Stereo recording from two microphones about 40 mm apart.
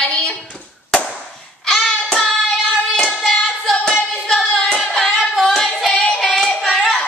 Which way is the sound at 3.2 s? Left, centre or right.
Centre.